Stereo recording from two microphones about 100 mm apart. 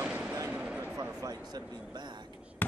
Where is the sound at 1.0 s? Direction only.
40° right (ahead or behind).